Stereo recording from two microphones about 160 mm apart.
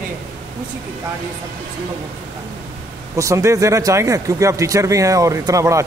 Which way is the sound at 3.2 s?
20° right (ahead or behind).